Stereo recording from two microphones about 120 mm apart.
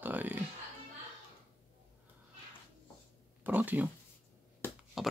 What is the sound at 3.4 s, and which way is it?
Speech, 15° right (ahead or behind).